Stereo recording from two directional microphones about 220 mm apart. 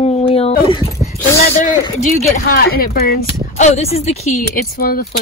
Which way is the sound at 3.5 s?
30° left (ahead or behind).